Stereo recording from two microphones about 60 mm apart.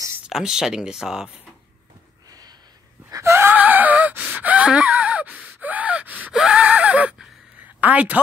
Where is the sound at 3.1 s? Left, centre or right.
Right.